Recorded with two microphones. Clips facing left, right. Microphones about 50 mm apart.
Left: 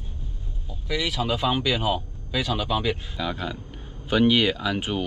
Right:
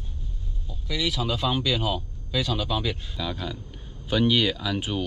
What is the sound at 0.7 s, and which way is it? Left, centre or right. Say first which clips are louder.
Speech: left 1 dB; left.